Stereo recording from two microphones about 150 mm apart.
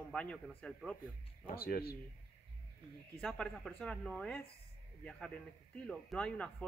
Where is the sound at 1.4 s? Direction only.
80° left.